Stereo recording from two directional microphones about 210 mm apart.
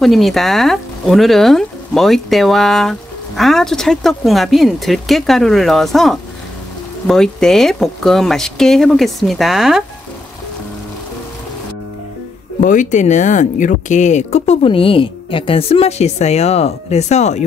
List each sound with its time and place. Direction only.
0.0 s speech: centre (ahead or behind)
12.6 s speech: 35° left (ahead or behind)